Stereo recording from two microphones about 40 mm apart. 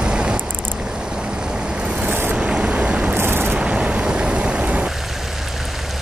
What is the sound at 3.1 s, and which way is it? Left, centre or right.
Vehicle, right.